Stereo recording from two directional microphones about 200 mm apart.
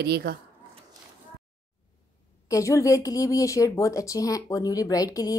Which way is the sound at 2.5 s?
15° left (ahead or behind).